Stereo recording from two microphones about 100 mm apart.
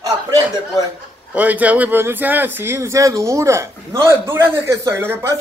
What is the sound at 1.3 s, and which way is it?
Speech, 15° right (ahead or behind).